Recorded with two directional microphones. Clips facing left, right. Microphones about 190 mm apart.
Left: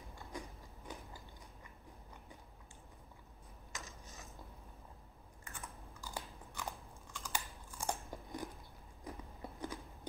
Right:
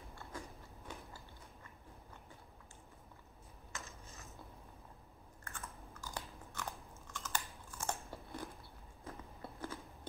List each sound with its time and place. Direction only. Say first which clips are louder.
0.1 s biting: left 1 dB; 15° left (ahead or behind)
3.7 s dishes: even; 15° left (ahead or behind)
5.4 s biting: even; 15° left (ahead or behind)